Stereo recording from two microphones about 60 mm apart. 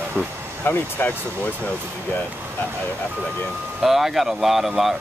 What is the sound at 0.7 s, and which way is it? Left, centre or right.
Speech, left.